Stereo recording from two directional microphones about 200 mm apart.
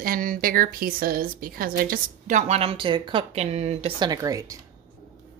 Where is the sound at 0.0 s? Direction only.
45° right (ahead or behind); by 4.6 s 15° right (ahead or behind).